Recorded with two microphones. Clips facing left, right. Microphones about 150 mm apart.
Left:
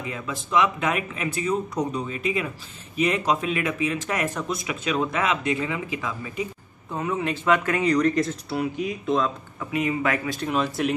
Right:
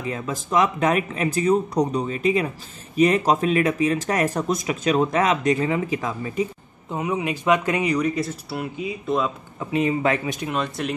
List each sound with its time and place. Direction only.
0.0 s speech: 40° right (ahead or behind)
6.9 s speech: 15° right (ahead or behind)
9.6 s speech: 30° right (ahead or behind)
10.5 s speech: centre (ahead or behind)